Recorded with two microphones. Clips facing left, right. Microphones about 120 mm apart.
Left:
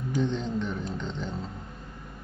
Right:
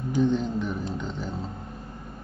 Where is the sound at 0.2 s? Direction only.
5° right (ahead or behind).